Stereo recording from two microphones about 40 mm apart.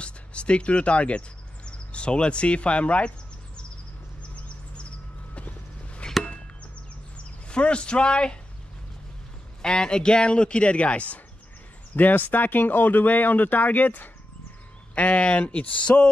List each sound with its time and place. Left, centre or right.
0.0 s speech: left
6.0 s chop: left
7.4 s speech: left
9.6 s speech: centre
11.9 s speech: left
15.0 s speech: left